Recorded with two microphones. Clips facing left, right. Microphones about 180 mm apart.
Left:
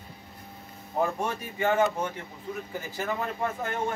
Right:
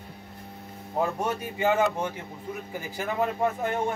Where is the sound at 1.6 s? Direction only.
10° right (ahead or behind).